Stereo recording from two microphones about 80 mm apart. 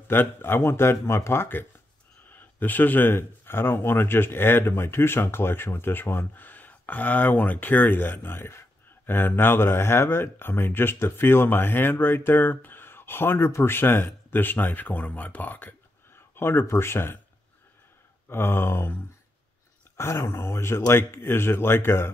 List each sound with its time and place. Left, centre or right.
0.1 s speech: left
18.3 s speech: left
20.0 s speech: left